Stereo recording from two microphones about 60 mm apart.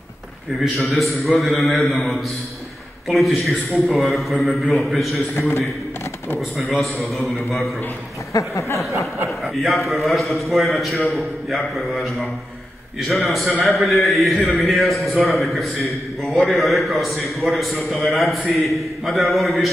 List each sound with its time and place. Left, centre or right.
0.7 s a man's voice: centre
6.7 s a man's voice: centre
8.3 s a sound: left
9.6 s a man's voice: centre